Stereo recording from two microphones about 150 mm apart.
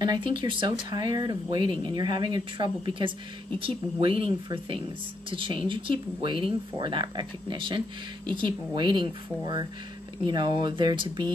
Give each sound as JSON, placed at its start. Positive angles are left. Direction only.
{"t": 0.0, "sound": "speech", "side_deg": -30}